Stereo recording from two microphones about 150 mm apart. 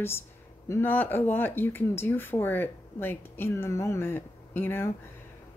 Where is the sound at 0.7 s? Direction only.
15° left (ahead or behind).